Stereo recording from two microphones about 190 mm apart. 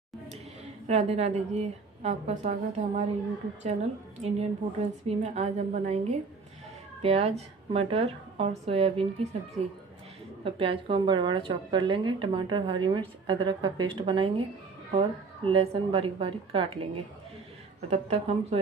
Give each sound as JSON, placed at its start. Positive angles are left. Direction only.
{"t": 0.8, "sound": "a woman's voice", "side_deg": -35}
{"t": 4.2, "sound": "a woman's voice", "side_deg": -35}
{"t": 10.4, "sound": "a woman's voice", "side_deg": -30}